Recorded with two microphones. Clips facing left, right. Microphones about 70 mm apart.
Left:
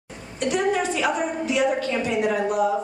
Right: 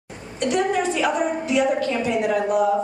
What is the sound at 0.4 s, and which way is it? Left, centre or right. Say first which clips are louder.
A woman's voice: right 1 dB; centre.